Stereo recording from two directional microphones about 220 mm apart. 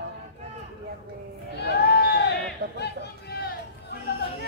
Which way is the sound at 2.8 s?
50° left (ahead or behind).